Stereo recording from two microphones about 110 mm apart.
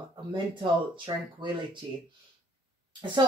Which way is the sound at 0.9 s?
45° right (ahead or behind).